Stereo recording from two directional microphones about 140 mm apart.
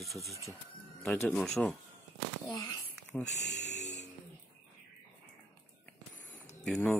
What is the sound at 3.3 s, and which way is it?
Music, 55° left (ahead or behind).